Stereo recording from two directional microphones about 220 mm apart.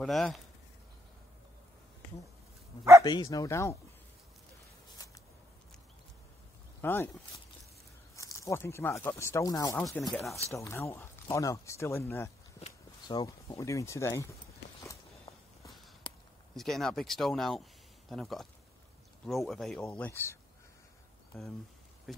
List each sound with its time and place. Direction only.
0.0 s speech: centre (ahead or behind)
3.0 s speech: 20° left (ahead or behind)
5.0 s a sound: 15° left (ahead or behind)
6.8 s speech: 10° left (ahead or behind)
8.2 s speech: 15° left (ahead or behind)
10.1 s speech: centre (ahead or behind)
10.5 s speech: 10° left (ahead or behind)
12.5 s speech: 25° left (ahead or behind)
16.0 s a sound: 20° left (ahead or behind)
16.5 s speech: centre (ahead or behind)